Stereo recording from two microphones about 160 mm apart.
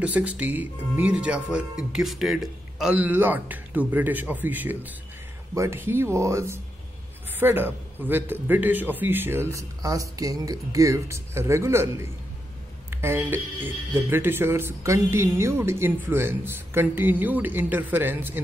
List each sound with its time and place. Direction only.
0.0 s speech: 10° right (ahead or behind)